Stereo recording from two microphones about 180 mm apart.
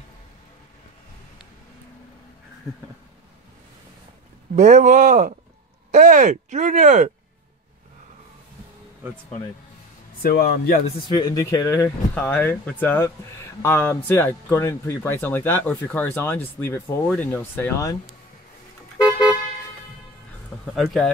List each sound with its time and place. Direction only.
4.6 s speech: 40° right (ahead or behind)
10.2 s speech: 55° left (ahead or behind)
11.1 s speech: 20° left (ahead or behind)
20.7 s speech: centre (ahead or behind)